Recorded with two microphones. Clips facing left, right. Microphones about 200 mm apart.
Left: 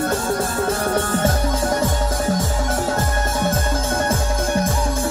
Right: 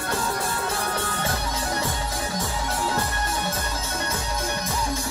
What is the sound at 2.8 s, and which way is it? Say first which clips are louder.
Music: left 5 dB; 50° left (ahead or behind).